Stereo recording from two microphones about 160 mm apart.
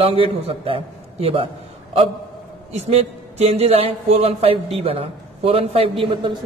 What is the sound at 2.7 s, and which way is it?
A man's voice, 40° right (ahead or behind).